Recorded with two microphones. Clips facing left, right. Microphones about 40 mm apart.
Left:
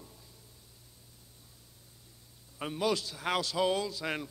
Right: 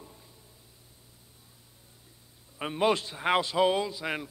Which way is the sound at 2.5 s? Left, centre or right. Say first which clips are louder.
Right 5 dB; right.